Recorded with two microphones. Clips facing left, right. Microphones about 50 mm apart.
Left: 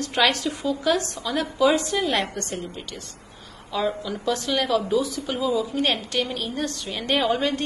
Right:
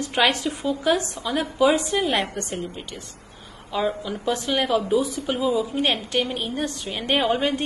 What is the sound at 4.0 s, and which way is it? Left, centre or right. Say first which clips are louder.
A woman's voice: even; centre.